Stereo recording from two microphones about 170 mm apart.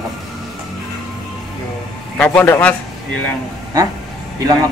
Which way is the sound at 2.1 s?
10° left (ahead or behind).